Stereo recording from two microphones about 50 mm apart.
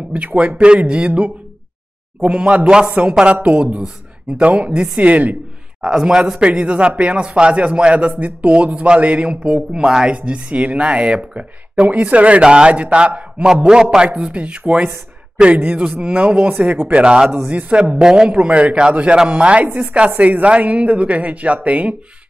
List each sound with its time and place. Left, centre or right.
0.4 s speech: right
4.4 s speech: right
5.9 s speech: centre
16.8 s speech: right